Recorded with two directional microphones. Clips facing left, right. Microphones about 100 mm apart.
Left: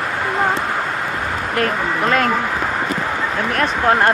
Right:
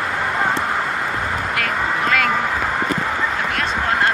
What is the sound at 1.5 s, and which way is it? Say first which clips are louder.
Speech: left 5 dB; 40° left (ahead or behind).